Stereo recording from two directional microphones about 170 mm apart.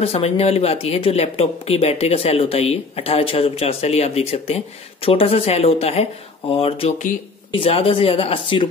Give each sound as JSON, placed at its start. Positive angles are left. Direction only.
{"t": 0.0, "sound": "speech", "side_deg": 35}